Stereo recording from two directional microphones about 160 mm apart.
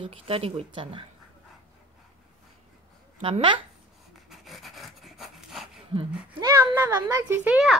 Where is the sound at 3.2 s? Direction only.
35° right (ahead or behind).